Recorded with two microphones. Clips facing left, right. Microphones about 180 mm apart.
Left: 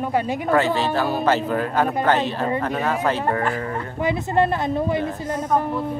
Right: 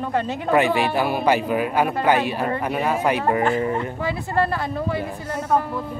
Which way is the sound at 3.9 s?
20° left (ahead or behind).